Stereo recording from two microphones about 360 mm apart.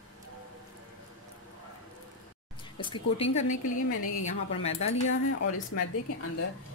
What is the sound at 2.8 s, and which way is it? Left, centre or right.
Speech, centre.